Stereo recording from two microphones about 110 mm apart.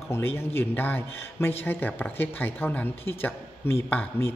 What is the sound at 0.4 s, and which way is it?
A woman's voice, 20° left (ahead or behind).